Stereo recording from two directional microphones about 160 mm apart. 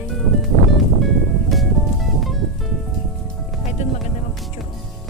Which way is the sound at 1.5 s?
Centre (ahead or behind).